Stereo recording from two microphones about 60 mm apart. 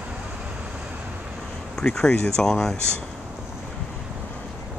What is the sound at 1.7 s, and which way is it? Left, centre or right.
Speech, centre.